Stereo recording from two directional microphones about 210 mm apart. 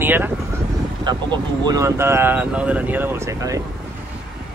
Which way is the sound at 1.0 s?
20° right (ahead or behind).